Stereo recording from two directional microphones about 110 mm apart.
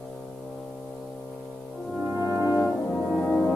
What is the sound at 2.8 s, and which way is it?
Brass instrument, 5° left (ahead or behind).